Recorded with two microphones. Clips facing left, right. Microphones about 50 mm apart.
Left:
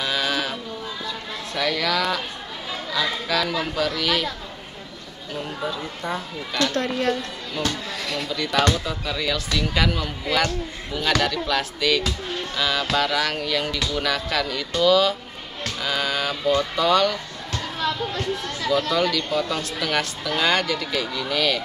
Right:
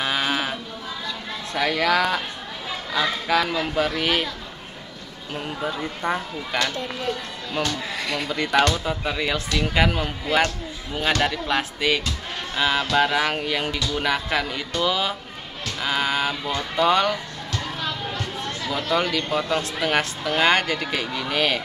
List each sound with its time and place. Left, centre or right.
0.0 s sheep: right
1.5 s speech: right
6.0 s speech: right
6.7 s speech: left
7.9 s speech: centre
8.3 s speech: right
18.9 s speech: right